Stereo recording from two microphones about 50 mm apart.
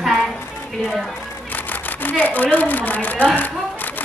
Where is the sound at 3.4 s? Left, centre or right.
Left.